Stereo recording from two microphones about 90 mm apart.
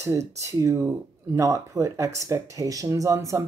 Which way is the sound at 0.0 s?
35° right (ahead or behind).